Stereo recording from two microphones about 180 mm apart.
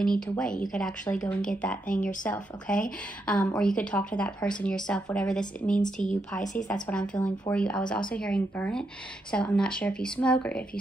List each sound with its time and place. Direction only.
0.0 s speech: 5° left (ahead or behind)
1.9 s speech: 45° left (ahead or behind)
2.2 s speech: 10° left (ahead or behind)